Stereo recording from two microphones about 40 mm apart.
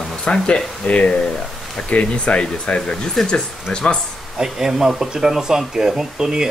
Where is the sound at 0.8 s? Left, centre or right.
Left.